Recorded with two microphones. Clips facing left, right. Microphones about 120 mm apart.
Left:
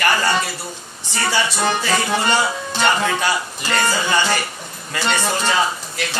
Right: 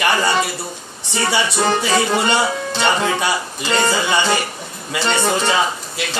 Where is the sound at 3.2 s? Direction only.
20° right (ahead or behind).